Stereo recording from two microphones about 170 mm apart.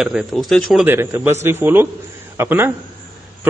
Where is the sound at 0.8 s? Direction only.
15° right (ahead or behind).